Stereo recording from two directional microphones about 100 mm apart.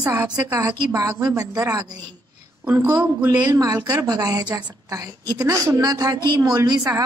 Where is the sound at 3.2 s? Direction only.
35° right (ahead or behind).